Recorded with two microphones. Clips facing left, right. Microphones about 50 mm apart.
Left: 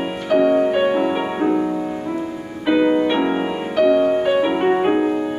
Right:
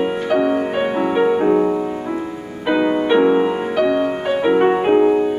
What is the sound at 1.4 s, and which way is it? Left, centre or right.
Music, centre.